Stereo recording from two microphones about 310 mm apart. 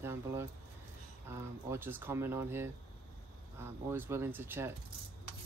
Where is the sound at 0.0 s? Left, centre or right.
Centre.